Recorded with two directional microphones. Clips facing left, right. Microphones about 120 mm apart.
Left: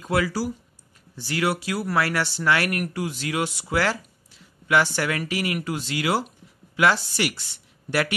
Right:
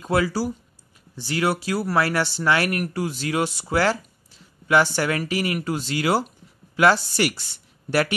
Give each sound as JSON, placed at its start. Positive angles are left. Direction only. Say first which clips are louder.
{"t": 0.0, "sound": "speech", "louder": "right 2 dB", "side_deg": -30}